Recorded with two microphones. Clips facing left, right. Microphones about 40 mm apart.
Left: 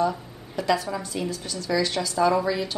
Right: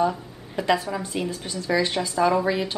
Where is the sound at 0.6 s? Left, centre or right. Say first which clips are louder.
Right 1 dB; right.